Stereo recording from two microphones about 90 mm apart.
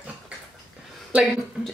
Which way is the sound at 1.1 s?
15° right (ahead or behind).